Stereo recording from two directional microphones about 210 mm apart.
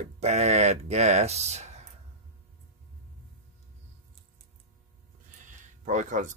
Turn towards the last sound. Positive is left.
turn(degrees=-35)  # may be behind; listen again after turning